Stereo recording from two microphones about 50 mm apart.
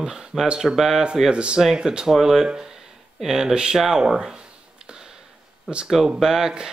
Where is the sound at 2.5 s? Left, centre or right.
Centre.